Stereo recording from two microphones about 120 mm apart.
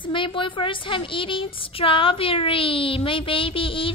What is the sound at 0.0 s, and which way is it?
A woman's voice, 45° left (ahead or behind).